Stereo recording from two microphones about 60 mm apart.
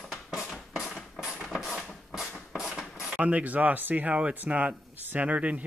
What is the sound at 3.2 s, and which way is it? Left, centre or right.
Speech, right.